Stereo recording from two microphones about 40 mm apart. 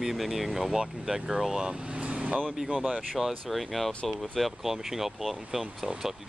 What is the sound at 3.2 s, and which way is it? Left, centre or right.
Speech, centre.